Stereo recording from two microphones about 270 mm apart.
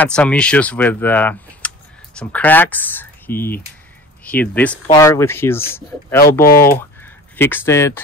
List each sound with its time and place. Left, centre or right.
0.0 s speech: centre
6.4 s speech: left
6.7 s speech: centre